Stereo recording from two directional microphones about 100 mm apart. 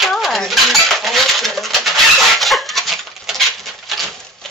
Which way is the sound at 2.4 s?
Centre (ahead or behind).